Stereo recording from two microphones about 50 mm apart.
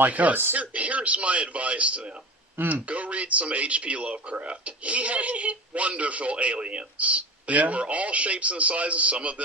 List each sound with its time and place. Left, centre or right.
0.0 s speech: right